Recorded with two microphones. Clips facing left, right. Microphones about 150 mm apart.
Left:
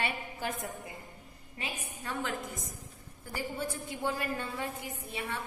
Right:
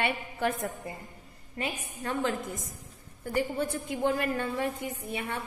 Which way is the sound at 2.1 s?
50° right (ahead or behind).